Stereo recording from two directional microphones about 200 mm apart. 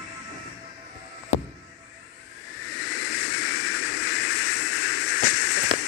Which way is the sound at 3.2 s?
90° left.